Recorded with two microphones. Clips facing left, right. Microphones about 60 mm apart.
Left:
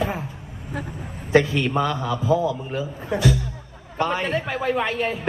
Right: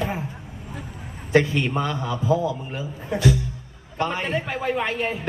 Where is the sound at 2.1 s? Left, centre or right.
Centre.